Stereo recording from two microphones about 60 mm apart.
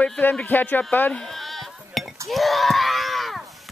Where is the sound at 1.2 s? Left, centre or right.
Centre.